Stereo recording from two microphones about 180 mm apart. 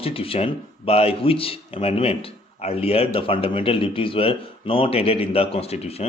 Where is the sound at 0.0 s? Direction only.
30° left (ahead or behind).